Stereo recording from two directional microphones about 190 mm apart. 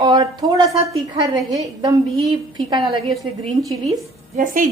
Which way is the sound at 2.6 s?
25° right (ahead or behind).